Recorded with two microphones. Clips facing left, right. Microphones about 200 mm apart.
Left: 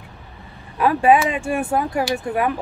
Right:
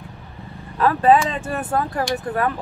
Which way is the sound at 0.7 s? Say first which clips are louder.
Even; 10° left (ahead or behind).